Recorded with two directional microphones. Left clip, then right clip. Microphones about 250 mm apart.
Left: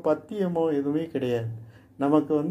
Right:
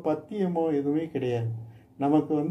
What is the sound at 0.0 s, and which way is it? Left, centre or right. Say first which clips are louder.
Speech: left 3 dB; left.